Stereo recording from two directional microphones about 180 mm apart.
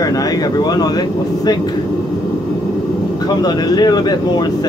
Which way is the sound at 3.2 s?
20° left (ahead or behind).